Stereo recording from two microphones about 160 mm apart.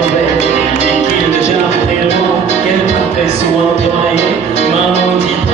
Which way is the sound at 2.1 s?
45° left (ahead or behind).